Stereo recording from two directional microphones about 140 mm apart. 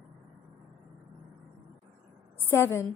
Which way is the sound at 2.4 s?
15° left (ahead or behind).